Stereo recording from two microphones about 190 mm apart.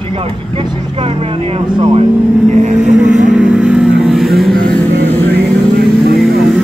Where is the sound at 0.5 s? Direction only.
25° right (ahead or behind).